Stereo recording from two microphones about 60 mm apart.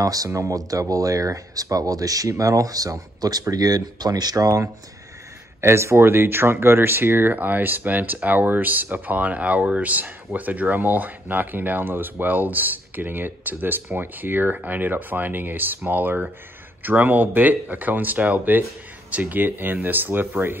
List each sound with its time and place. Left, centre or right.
0.0 s speech: right
5.6 s speech: right